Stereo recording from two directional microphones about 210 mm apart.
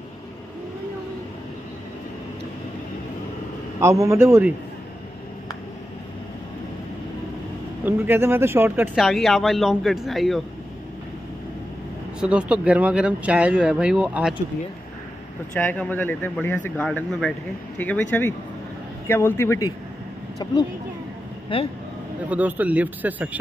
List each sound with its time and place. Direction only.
3.8 s speech: 15° right (ahead or behind)
7.8 s speech: 10° right (ahead or behind)
12.2 s speech: 5° right (ahead or behind)
15.5 s speech: 5° left (ahead or behind)
21.5 s speech: 25° left (ahead or behind)
22.3 s speech: 10° right (ahead or behind)